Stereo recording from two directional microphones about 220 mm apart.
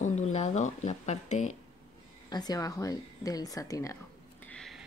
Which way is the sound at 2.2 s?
20° left (ahead or behind).